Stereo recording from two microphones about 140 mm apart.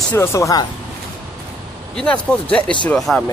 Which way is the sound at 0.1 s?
20° left (ahead or behind).